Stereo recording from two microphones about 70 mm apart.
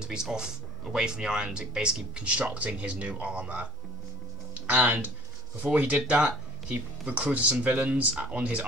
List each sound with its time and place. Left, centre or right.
0.0 s speech: centre
4.6 s speech: right